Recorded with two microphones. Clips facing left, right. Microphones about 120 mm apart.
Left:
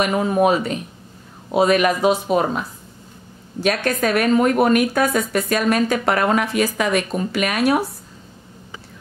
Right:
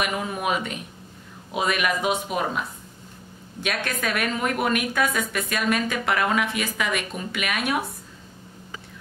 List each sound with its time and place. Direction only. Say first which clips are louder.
0.0 s a woman's voice: left 9 dB; 35° left (ahead or behind)
3.6 s a woman's voice: left 8 dB; 35° left (ahead or behind)